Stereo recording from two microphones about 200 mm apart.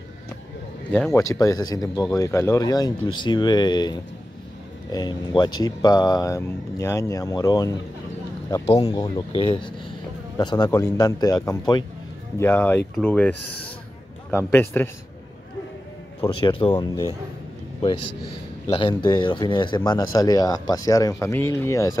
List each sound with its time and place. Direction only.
0.9 s speech: 10° left (ahead or behind)
14.3 s speech: 10° left (ahead or behind)
16.3 s speech: 25° left (ahead or behind)
18.7 s speech: 25° left (ahead or behind)